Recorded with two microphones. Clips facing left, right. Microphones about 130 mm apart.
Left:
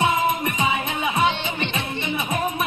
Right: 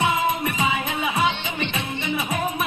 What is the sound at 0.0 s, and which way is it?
Music, centre (ahead or behind).